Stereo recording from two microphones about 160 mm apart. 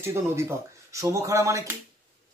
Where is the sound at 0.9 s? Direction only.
20° right (ahead or behind).